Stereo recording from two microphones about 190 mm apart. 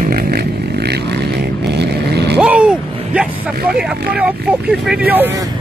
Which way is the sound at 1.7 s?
60° right (ahead or behind).